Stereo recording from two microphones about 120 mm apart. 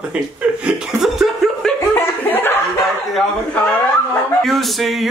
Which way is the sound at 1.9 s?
15° left (ahead or behind).